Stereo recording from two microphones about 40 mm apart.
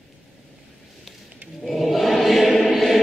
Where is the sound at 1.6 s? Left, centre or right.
Centre.